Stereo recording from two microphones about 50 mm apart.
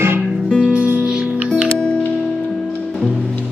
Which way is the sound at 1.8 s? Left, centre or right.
Left.